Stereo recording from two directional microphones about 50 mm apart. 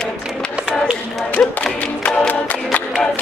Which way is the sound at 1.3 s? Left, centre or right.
Left.